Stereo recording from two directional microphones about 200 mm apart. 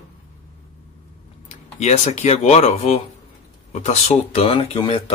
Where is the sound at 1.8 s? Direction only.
35° left (ahead or behind).